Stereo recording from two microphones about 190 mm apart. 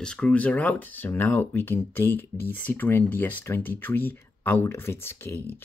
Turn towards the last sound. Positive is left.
turn(degrees=10)  # may be behind; listen again after turning